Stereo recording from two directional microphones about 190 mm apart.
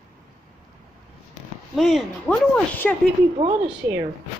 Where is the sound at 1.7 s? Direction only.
Centre (ahead or behind).